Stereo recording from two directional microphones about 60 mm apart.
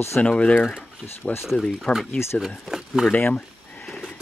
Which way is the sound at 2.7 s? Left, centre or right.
Centre.